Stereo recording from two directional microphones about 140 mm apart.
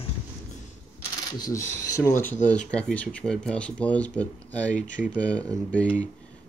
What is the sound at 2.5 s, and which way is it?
Speech, 10° left (ahead or behind).